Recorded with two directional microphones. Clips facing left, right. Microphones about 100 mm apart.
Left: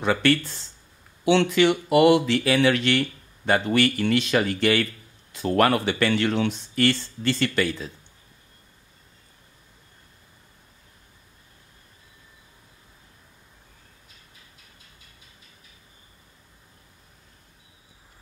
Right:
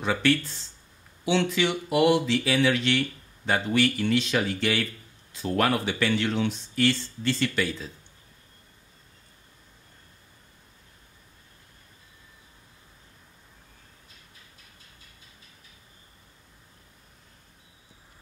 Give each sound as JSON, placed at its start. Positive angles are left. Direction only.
{"t": 0.0, "sound": "speech", "side_deg": 65}